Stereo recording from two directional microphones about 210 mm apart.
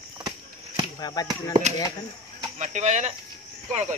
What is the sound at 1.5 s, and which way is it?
Speech, 35° right (ahead or behind).